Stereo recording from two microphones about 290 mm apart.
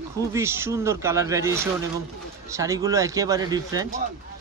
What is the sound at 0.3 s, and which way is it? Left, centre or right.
Speech, centre.